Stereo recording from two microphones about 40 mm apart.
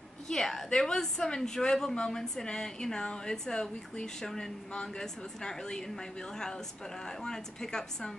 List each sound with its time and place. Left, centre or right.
0.3 s a woman's voice: centre